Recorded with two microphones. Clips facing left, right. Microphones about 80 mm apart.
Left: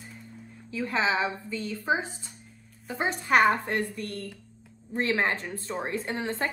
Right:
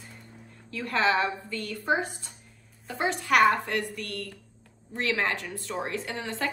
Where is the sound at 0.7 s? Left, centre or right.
Centre.